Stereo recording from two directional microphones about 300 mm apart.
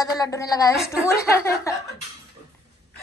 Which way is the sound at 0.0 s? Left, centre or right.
Centre.